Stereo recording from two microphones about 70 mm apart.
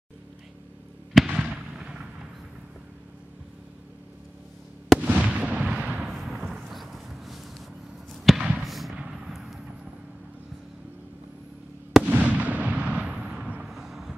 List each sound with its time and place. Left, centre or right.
1.2 s fireworks: centre
5.0 s artillery fire: right
6.0 s a sound: centre
8.4 s basketball bounce: centre
8.6 s a sound: centre
8.9 s artillery fire: centre
12.0 s fireworks: right
13.6 s vehicle: centre